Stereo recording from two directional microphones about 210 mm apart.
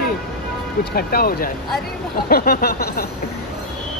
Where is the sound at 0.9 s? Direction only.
45° left (ahead or behind).